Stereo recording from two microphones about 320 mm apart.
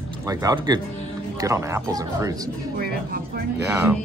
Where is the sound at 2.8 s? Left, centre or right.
Right.